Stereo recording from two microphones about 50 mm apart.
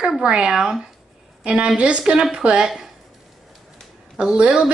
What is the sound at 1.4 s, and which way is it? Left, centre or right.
A woman's voice, right.